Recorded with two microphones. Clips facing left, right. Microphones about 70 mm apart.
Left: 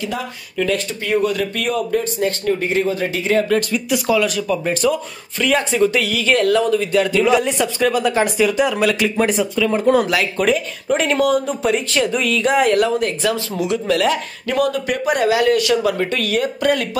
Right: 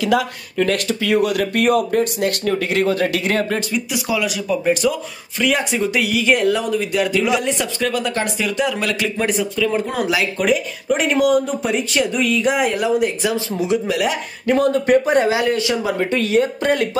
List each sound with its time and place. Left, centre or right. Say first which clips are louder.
0.8 s speech: right 1 dB; right
3.7 s speech: left 4 dB; centre
14.4 s speech: right 4 dB; right